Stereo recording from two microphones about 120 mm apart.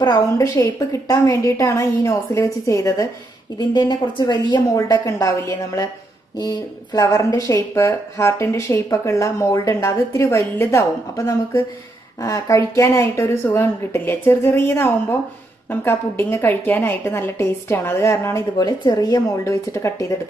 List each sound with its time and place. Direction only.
0.0 s a woman's voice: 35° left (ahead or behind)
3.5 s a woman's voice: 35° left (ahead or behind)